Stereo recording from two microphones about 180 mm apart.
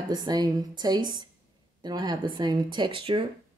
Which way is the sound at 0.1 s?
25° right (ahead or behind).